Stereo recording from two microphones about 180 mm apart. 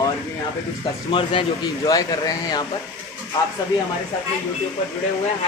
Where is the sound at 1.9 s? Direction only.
20° left (ahead or behind).